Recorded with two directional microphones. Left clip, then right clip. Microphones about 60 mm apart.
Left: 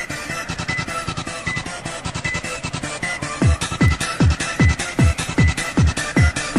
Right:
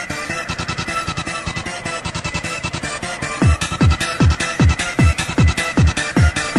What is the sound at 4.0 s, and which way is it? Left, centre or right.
Music, right.